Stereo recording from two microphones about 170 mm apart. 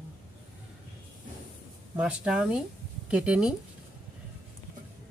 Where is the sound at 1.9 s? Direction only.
5° right (ahead or behind).